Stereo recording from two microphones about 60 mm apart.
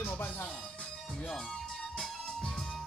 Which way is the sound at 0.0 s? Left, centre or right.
Left.